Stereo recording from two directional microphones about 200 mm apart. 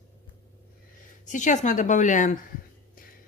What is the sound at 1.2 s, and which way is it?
Speech, 40° left (ahead or behind).